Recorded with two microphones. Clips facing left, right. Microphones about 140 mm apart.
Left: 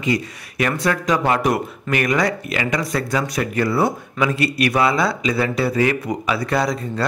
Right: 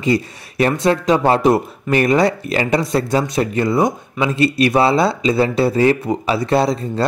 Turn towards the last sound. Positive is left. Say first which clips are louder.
# right 4 dB
turn(degrees=-25)  # may be behind; listen again after turning